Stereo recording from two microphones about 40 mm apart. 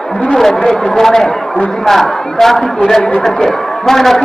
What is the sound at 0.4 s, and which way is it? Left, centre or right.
A man's voice, centre.